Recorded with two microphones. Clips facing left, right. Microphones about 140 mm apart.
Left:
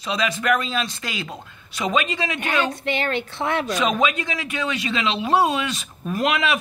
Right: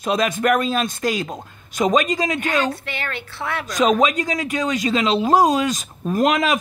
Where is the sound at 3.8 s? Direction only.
40° right (ahead or behind).